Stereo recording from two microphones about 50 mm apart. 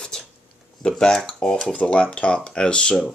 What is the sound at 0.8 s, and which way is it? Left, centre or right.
Speech, centre.